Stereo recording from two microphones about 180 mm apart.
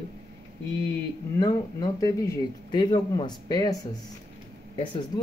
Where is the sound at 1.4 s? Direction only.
20° left (ahead or behind).